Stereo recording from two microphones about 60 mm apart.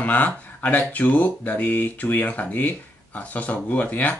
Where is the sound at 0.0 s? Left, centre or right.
Left.